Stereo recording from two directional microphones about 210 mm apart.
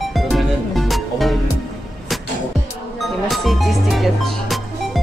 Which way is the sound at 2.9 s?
Centre (ahead or behind).